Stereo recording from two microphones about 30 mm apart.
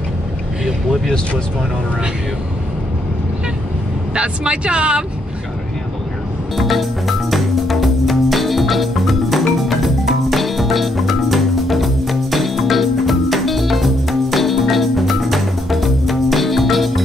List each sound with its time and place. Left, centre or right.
4.1 s speech: right
6.5 s music: centre